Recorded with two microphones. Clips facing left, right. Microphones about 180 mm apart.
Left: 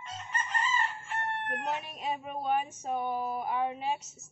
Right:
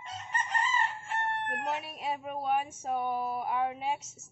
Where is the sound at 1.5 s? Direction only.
10° right (ahead or behind).